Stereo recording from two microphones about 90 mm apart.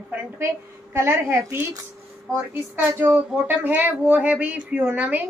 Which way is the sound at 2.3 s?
25° right (ahead or behind).